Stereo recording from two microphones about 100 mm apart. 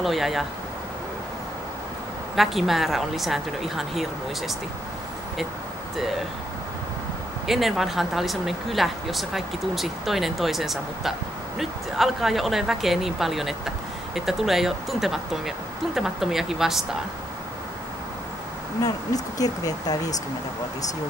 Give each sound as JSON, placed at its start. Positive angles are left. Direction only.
{"t": 0.0, "sound": "speech", "side_deg": 0}
{"t": 2.3, "sound": "speech", "side_deg": 0}
{"t": 7.4, "sound": "speech", "side_deg": 0}
{"t": 18.8, "sound": "speech", "side_deg": 35}